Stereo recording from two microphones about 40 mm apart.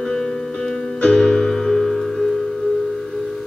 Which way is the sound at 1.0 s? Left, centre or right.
Left.